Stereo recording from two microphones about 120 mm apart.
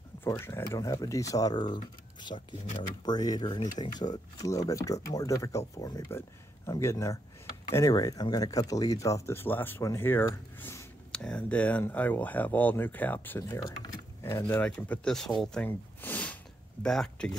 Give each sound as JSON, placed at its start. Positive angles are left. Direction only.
{"t": 0.3, "sound": "speech", "side_deg": 20}
{"t": 0.7, "sound": "speech", "side_deg": 35}
{"t": 10.6, "sound": "a sound", "side_deg": 20}
{"t": 11.1, "sound": "speech", "side_deg": 5}
{"t": 14.6, "sound": "speech", "side_deg": 10}
{"t": 15.4, "sound": "snort", "side_deg": 10}
{"t": 16.8, "sound": "speech", "side_deg": 5}